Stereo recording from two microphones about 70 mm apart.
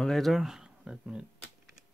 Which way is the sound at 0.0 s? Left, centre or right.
Centre.